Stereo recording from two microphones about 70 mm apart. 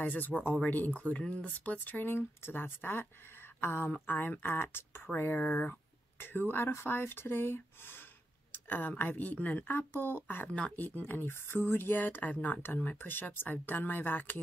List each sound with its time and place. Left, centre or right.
0.0 s speech: left